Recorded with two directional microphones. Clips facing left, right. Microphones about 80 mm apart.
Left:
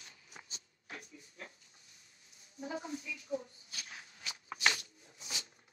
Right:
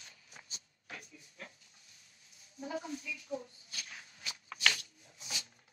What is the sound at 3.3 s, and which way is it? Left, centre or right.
Speech, centre.